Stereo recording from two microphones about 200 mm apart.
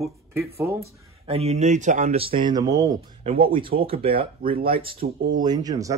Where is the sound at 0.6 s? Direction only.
15° right (ahead or behind).